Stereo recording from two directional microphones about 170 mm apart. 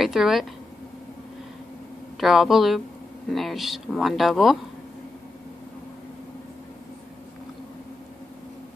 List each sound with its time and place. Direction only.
0.0 s speech: centre (ahead or behind)
2.1 s speech: centre (ahead or behind)